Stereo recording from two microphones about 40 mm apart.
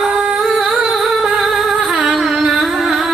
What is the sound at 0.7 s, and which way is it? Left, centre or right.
Humming, centre.